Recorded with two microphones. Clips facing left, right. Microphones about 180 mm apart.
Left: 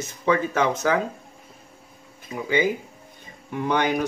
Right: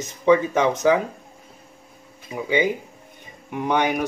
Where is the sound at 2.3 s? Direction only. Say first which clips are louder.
Right 1 dB; 15° right (ahead or behind).